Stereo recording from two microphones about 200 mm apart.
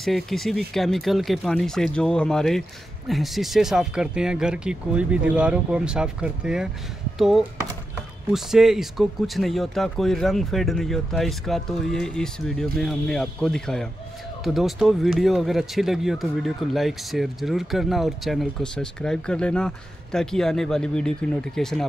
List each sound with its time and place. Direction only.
0.0 s speech: centre (ahead or behind)